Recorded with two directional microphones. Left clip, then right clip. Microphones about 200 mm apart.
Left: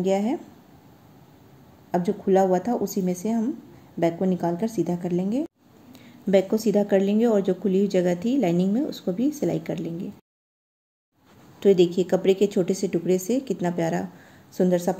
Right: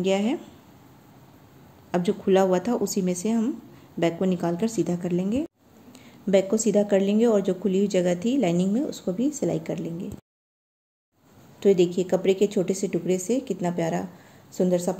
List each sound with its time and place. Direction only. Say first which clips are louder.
0.0 s a woman's voice: left 1 dB; centre (ahead or behind)
1.9 s a woman's voice: even; centre (ahead or behind)
11.6 s a woman's voice: left 2 dB; 5° left (ahead or behind)